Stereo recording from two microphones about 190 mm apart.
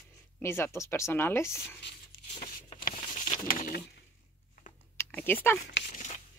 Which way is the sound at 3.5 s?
45° left (ahead or behind).